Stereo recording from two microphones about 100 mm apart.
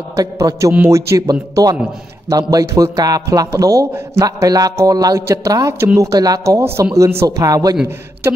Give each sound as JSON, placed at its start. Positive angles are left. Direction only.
{"t": 0.1, "sound": "speech", "side_deg": -35}
{"t": 7.2, "sound": "speech", "side_deg": -35}